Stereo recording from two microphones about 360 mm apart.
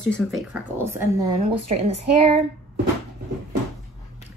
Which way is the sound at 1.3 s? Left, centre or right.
Centre.